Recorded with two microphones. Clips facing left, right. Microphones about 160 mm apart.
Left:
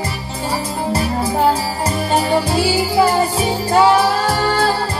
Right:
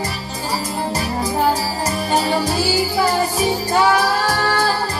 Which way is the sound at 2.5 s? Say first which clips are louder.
Left 3 dB; 25° left (ahead or behind).